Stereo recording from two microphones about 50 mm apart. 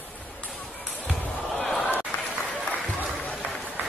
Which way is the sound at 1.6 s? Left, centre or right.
Centre.